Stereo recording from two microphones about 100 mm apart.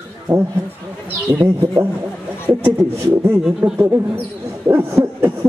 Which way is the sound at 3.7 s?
20° right (ahead or behind).